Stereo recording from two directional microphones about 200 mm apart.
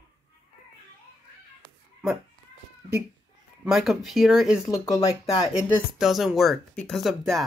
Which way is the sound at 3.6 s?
Centre (ahead or behind).